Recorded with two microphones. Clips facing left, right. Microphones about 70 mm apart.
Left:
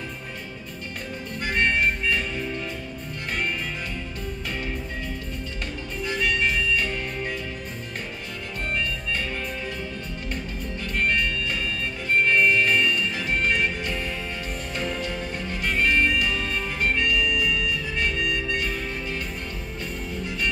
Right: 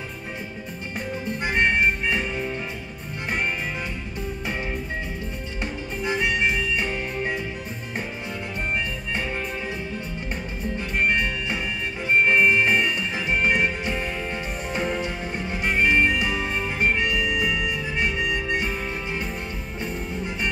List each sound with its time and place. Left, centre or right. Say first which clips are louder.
1.4 s music: right 2 dB; centre
6.0 s music: right 2 dB; centre
11.0 s music: right 1 dB; centre